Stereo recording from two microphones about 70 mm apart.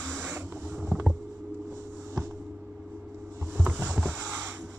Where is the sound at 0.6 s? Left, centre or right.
Centre.